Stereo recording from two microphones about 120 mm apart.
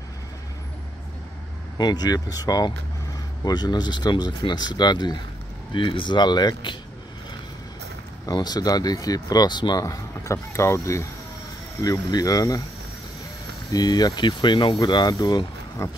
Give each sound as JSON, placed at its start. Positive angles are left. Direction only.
{"t": 1.8, "sound": "speech", "side_deg": 35}
{"t": 8.3, "sound": "speech", "side_deg": 35}
{"t": 13.7, "sound": "speech", "side_deg": 35}
{"t": 15.8, "sound": "speech", "side_deg": 25}